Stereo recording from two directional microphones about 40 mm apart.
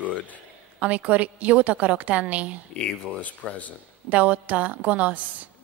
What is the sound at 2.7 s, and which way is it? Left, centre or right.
Speech, left.